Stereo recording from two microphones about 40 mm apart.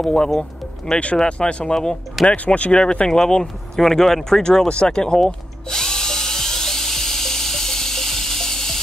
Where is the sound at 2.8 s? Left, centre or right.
Left.